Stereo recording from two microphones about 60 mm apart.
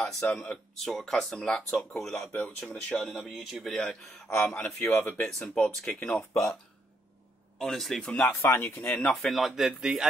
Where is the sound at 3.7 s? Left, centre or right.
Centre.